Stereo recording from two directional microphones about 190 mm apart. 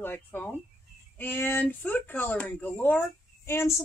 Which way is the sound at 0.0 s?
10° left (ahead or behind).